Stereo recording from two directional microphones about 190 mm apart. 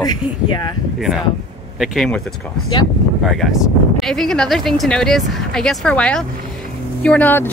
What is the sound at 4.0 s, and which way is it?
Speech, centre (ahead or behind).